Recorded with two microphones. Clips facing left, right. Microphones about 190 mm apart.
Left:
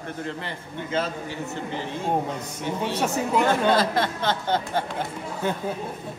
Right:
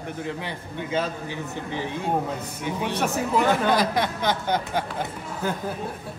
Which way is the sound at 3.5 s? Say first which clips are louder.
Left 1 dB; 15° right (ahead or behind).